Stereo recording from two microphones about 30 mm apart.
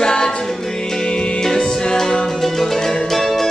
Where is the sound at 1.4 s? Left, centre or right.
Centre.